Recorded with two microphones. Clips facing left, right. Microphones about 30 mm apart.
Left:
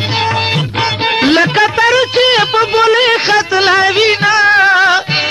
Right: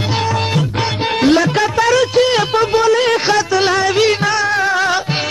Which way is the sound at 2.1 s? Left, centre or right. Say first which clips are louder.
Left 3 dB; left.